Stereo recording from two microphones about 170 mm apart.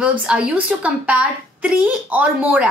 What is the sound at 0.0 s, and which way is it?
A woman's voice, 10° right (ahead or behind).